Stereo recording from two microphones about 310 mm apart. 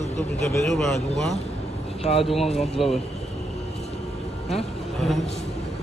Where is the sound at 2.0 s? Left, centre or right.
Centre.